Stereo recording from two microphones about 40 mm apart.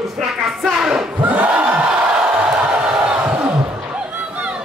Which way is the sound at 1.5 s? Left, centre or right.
Right.